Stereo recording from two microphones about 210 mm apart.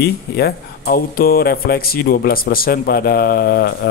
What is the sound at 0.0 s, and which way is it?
Speech, 50° left (ahead or behind).